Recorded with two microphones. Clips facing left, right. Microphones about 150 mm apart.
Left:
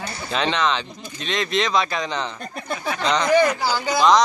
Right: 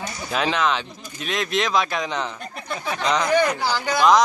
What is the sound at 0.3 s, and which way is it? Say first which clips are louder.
Speech: even; 5° right (ahead or behind).